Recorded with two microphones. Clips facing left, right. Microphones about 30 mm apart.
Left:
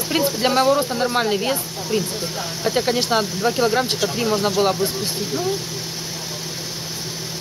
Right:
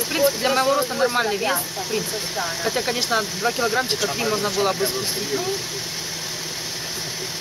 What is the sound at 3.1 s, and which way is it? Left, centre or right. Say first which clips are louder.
Speech: left 2 dB; centre.